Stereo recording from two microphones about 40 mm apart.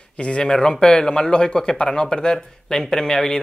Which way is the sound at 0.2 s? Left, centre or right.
Left.